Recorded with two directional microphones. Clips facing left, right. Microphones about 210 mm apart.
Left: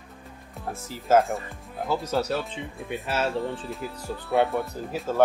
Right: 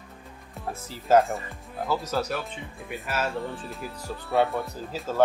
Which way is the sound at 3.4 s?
Centre (ahead or behind).